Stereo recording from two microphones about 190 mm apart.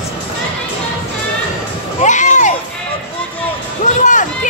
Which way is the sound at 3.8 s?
40° left (ahead or behind).